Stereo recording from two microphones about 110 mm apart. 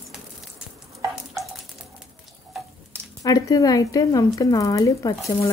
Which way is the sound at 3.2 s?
35° left (ahead or behind).